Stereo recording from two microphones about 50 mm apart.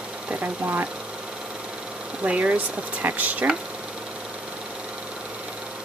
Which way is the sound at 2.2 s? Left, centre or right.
Right.